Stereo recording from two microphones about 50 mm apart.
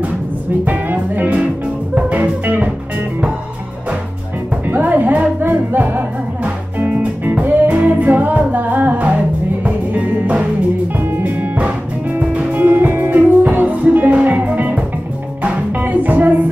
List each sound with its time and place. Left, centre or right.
0.7 s music: right
4.6 s music: right
11.1 s music: right
12.2 s music: right